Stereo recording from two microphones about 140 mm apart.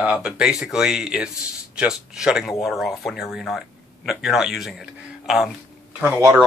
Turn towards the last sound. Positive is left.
turn(degrees=-10)  # may be behind; listen again after turning